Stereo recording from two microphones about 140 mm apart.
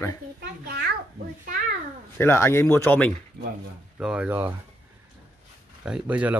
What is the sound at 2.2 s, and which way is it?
Speech, 15° left (ahead or behind).